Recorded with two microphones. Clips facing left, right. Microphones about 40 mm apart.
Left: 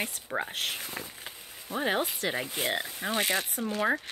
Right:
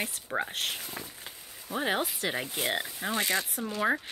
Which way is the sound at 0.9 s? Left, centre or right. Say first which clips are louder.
Left 2 dB; centre.